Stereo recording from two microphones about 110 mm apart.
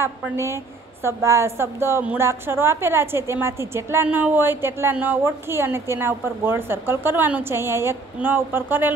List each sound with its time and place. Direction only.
1.0 s a woman's voice: 25° right (ahead or behind)